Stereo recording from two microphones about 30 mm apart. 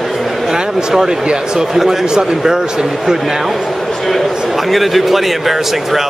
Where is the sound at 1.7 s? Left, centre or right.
Centre.